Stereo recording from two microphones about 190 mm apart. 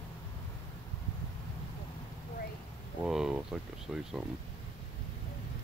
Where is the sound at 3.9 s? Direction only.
Centre (ahead or behind).